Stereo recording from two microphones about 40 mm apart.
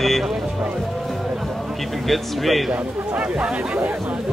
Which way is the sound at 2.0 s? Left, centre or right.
Centre.